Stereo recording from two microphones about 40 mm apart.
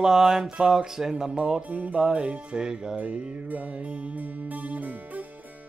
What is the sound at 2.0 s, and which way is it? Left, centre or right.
Music, right.